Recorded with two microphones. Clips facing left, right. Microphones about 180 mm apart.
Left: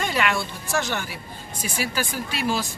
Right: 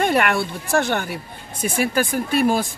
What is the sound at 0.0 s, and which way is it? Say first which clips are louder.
A woman's voice: right 6 dB; 55° right (ahead or behind).